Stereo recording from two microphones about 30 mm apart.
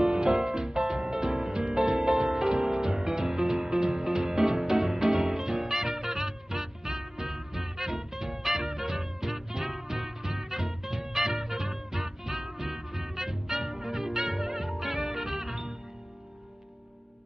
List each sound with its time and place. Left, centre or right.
0.0 s music: right